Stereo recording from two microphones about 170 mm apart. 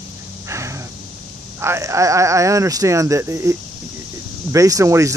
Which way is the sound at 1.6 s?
15° right (ahead or behind).